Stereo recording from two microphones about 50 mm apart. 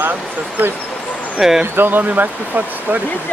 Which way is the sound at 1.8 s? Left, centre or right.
Right.